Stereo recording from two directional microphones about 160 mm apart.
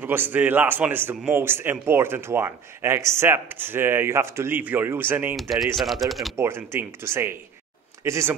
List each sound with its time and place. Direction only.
0.0 s speech: 15° right (ahead or behind)
5.3 s speech: centre (ahead or behind)
6.3 s speech: 15° right (ahead or behind)